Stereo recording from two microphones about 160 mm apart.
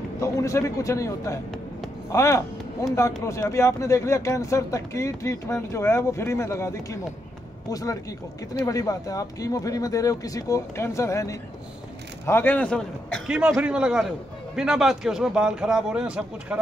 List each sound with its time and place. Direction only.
0.2 s a man's voice: 20° left (ahead or behind)
13.3 s speech: 5° right (ahead or behind)